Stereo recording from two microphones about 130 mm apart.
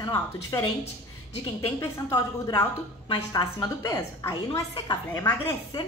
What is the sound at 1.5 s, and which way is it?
A woman's voice, 30° left (ahead or behind).